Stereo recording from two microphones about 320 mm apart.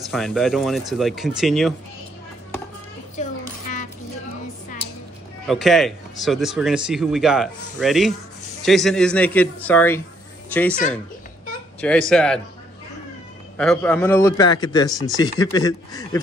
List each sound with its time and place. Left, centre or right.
0.0 s speech: centre
3.2 s a sound: left
5.5 s speech: centre
11.8 s speech: centre
13.6 s a man's voice: centre